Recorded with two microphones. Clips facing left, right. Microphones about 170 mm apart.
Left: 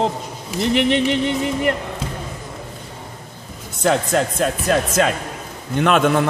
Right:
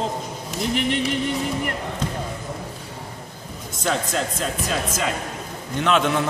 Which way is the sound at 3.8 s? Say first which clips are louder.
Left 6 dB; 60° left (ahead or behind).